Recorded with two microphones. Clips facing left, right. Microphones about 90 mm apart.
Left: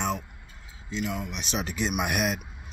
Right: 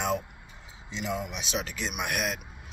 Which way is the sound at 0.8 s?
20° right (ahead or behind).